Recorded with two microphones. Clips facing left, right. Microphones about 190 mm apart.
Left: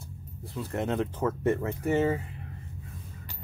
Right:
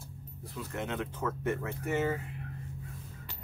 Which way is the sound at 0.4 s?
30° left (ahead or behind).